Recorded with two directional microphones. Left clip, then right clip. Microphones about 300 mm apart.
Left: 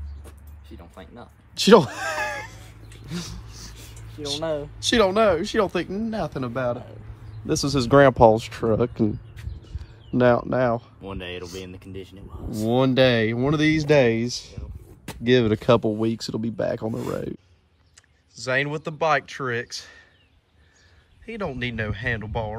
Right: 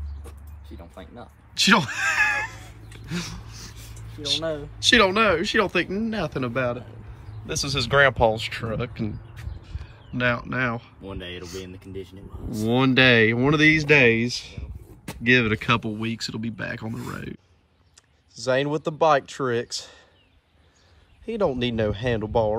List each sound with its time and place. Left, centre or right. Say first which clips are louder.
0.7 s speech: right 1 dB; centre
3.1 s dog: right 3 dB; centre
3.7 s a sound: even; left
4.4 s speech: left 2 dB; left
4.7 s speech: right 2 dB; centre
11.1 s speech: left 2 dB; centre
18.4 s speech: right 1 dB; centre
21.3 s speech: right 5 dB; centre